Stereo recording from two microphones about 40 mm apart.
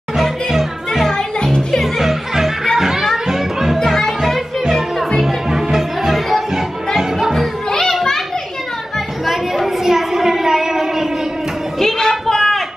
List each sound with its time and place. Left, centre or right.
0.1 s music: centre
1.0 s music: centre
1.8 s music: centre
2.8 s children playing: centre
3.3 s music: centre
3.8 s music: centre
4.2 s music: centre
7.8 s children playing: centre
9.2 s a sound: centre
11.8 s a sound: centre